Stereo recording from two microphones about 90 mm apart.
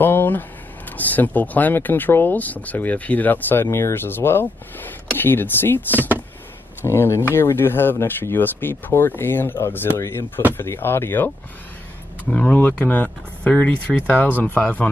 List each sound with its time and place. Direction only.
0.0 s speech: 25° left (ahead or behind)
5.9 s speech: 20° right (ahead or behind)
6.8 s speech: 30° left (ahead or behind)